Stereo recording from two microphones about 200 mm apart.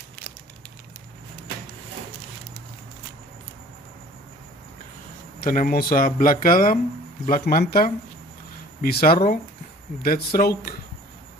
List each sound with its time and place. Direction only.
5.4 s speech: 45° left (ahead or behind)